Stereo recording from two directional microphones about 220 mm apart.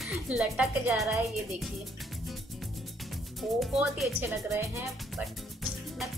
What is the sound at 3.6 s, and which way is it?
Speech, centre (ahead or behind).